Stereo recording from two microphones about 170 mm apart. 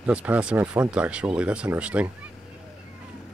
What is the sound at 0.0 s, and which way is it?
Speech, 10° right (ahead or behind).